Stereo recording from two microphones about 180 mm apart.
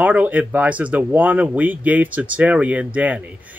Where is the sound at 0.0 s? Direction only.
10° right (ahead or behind).